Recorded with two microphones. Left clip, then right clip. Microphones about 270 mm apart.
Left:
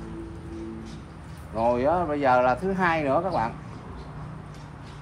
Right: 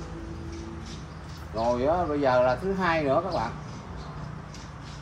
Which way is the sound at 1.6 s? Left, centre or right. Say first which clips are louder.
Left 2 dB; left.